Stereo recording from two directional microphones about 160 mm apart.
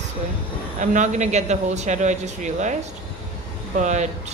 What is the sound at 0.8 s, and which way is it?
Speech, 50° right (ahead or behind).